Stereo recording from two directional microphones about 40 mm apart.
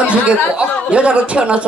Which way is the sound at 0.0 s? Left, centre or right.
Right.